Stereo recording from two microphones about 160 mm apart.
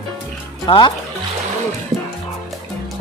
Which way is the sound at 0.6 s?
30° left (ahead or behind).